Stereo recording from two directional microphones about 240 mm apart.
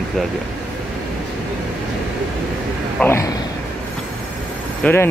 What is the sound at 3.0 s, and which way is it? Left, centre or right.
Speech, centre.